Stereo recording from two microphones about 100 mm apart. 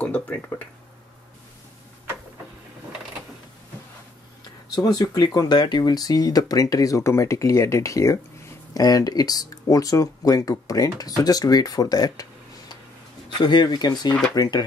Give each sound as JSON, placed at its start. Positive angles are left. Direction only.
{"t": 0.0, "sound": "speech", "side_deg": 10}
{"t": 4.7, "sound": "speech", "side_deg": 40}